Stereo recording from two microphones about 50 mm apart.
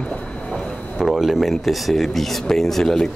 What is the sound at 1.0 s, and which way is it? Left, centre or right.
Speech, centre.